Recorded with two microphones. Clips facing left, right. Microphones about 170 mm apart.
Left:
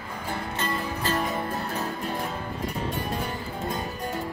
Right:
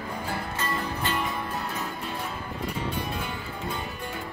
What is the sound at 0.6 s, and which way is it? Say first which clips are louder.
Music: left 1 dB; 40° left (ahead or behind).